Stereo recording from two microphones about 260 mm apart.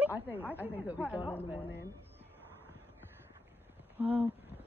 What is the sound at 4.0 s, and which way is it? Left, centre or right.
Speech, centre.